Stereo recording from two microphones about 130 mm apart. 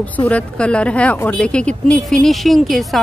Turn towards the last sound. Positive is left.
turn(degrees=0)  # may be behind; listen again after turning